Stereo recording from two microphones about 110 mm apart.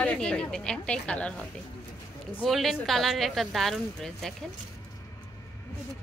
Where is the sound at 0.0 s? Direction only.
10° left (ahead or behind).